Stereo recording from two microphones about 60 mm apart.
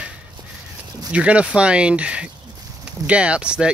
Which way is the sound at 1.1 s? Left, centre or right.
Centre.